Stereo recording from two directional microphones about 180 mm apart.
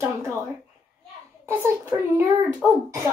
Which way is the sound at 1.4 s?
15° right (ahead or behind).